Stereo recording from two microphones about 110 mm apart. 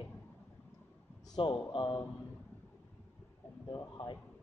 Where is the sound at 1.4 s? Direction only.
50° left (ahead or behind).